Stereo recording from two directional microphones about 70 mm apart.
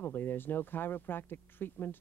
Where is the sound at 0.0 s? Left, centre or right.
Left.